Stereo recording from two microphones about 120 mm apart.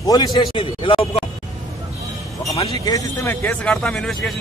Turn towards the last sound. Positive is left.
turn(degrees=5)  # may be behind; listen again after turning